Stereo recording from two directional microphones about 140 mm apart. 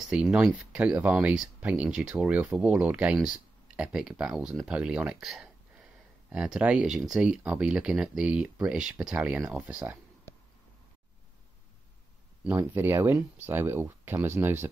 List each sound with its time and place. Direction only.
0.1 s speech: 5° right (ahead or behind)
12.4 s speech: 15° right (ahead or behind)